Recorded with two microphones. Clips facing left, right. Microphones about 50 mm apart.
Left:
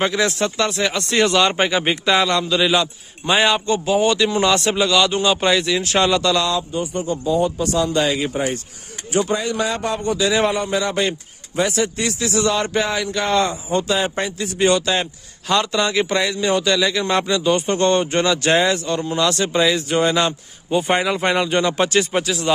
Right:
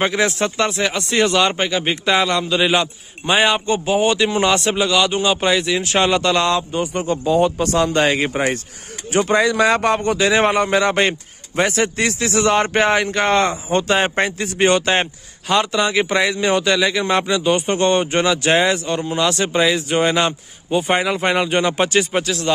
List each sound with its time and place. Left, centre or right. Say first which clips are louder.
0.0 s speech: right 1 dB; centre
0.8 s speech: even; centre
1.6 s speech: left 1 dB; centre
2.0 s speech: right 1 dB; centre
3.6 s speech: even; right
4.6 s speech: even; centre; by 6.4 s right
6.7 s a man's voice: right 2 dB; right
9.1 s a man's voice: right 4 dB; right
14.6 s speech: right 2 dB; right
15.9 s speech: right 2 dB; right
20.7 s speech: even; centre
21.8 s speech: right 1 dB; centre